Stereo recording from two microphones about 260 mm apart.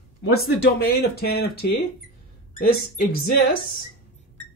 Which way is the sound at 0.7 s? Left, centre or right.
Left.